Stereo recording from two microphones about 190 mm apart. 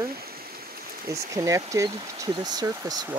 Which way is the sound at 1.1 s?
15° right (ahead or behind).